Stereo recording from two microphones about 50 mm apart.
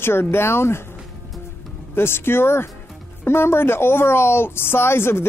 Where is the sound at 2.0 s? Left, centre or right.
Left.